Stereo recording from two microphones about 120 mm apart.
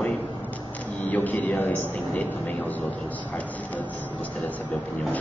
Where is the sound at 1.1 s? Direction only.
15° left (ahead or behind).